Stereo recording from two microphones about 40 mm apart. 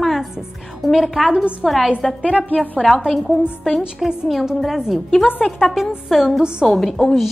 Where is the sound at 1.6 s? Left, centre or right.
Centre.